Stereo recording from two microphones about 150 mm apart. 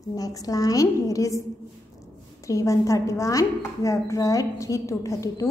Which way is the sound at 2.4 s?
20° left (ahead or behind).